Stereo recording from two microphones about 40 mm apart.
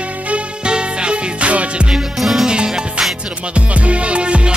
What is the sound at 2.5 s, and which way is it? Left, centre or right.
Music, right.